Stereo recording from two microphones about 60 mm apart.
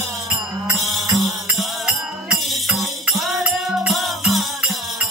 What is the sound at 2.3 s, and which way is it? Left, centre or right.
Music, centre.